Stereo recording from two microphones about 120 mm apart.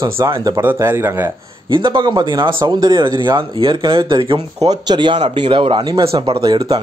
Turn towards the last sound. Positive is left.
turn(degrees=-45)  # may be behind; listen again after turning